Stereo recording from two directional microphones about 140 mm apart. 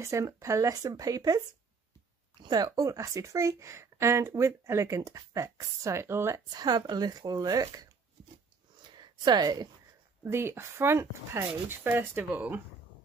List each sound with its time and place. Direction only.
0.0 s speech: 20° right (ahead or behind)
2.4 s speech: 30° right (ahead or behind)
8.8 s a sound: 30° right (ahead or behind)
10.2 s speech: 15° right (ahead or behind)